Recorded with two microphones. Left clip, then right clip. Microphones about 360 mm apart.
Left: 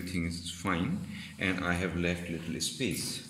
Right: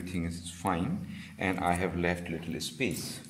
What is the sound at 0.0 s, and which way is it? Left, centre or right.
Speech, centre.